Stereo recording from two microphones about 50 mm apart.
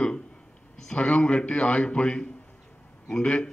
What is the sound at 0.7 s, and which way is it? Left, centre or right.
A man's voice, centre.